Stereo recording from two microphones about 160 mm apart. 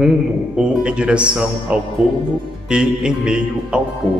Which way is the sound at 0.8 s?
5° right (ahead or behind).